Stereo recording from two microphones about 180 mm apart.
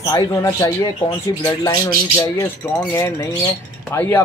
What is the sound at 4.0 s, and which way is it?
Speech, 15° left (ahead or behind).